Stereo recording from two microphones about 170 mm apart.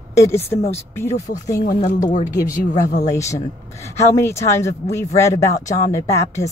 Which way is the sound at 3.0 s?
20° left (ahead or behind).